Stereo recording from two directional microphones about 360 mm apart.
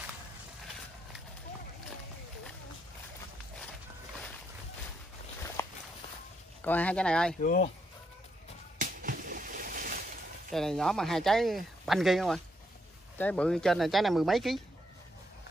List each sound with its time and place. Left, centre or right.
5.6 s walk: centre
6.6 s speech: centre
7.4 s speech: left
8.7 s a sound: right
10.5 s speech: centre